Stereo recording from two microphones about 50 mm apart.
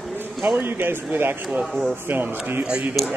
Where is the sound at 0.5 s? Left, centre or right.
Right.